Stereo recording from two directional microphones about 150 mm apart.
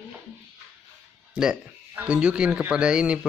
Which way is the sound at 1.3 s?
5° right (ahead or behind).